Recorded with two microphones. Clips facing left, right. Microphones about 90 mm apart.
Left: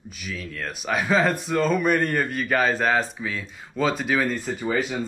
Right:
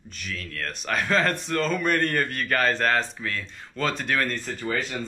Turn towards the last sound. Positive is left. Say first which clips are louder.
# left 4 dB
turn(degrees=5)  # may be behind; listen again after turning